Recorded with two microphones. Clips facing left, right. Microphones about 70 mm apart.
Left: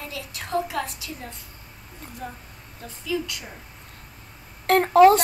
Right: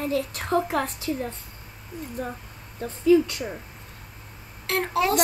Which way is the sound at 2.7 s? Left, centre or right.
Right.